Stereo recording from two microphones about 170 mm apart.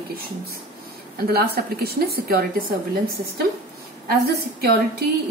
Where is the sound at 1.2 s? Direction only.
65° right (ahead or behind).